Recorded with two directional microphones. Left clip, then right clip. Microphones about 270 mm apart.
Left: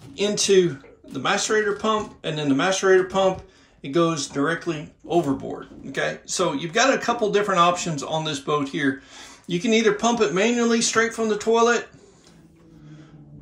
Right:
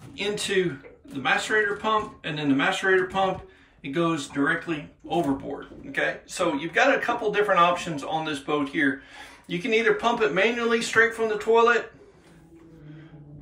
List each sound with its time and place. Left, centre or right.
0.1 s speech: centre